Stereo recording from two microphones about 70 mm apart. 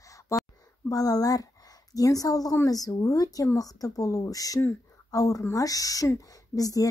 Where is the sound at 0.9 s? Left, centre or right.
Left.